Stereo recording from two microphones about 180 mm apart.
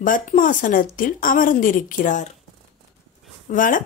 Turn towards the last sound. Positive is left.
turn(degrees=45)  # may be behind; listen again after turning